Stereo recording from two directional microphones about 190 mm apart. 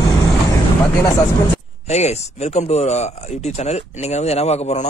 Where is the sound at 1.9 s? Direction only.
35° left (ahead or behind).